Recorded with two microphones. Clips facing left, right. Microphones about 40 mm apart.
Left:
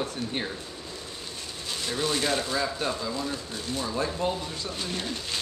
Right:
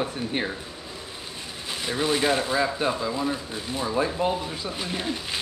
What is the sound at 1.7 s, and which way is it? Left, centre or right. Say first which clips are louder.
Speech: right 3 dB; centre.